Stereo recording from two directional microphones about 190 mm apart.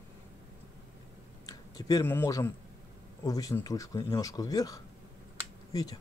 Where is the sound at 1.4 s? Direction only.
20° left (ahead or behind).